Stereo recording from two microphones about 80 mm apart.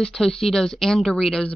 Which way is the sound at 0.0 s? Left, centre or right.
Centre.